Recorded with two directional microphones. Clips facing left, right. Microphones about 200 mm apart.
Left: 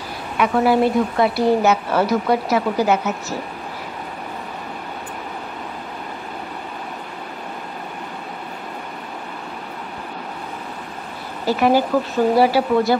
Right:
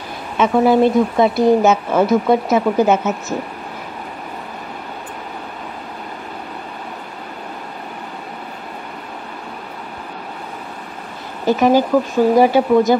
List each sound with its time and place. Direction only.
0.4 s a woman's voice: 20° right (ahead or behind)
11.4 s a woman's voice: 20° right (ahead or behind)